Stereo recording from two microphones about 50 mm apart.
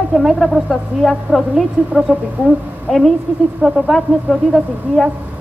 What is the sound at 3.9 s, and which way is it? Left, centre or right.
A woman's voice, centre.